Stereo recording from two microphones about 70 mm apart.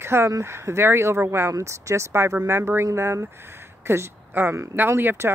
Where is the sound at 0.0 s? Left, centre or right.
Right.